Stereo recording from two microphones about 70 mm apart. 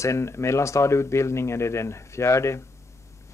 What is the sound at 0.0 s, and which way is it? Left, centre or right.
Speech, left.